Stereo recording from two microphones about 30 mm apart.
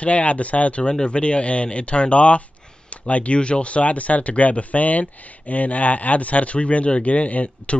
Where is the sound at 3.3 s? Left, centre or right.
Left.